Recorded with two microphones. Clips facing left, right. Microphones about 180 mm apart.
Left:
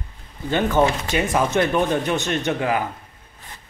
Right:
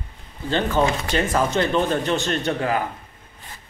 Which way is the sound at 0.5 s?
15° left (ahead or behind).